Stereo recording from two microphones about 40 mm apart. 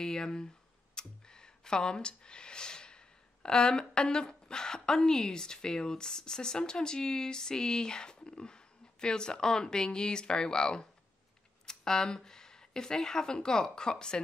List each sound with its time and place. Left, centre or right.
0.0 s speech: centre
0.9 s a sound: centre
3.4 s a woman's voice: left